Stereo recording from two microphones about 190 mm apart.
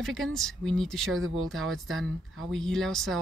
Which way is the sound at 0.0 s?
Centre (ahead or behind).